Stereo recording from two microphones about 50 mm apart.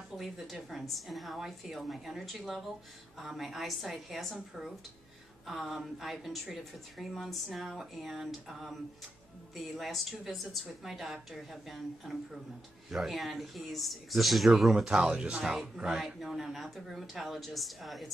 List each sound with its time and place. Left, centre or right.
0.2 s a woman's voice: centre
5.5 s a woman's voice: centre
15.0 s a woman's voice: centre